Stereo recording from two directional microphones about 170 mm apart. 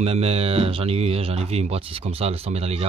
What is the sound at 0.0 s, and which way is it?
Speech, 35° right (ahead or behind).